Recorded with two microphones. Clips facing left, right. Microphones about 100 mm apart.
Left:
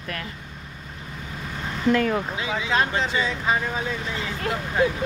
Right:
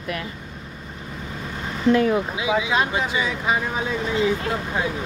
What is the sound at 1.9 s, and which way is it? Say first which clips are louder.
Speech: right 3 dB; 10° right (ahead or behind).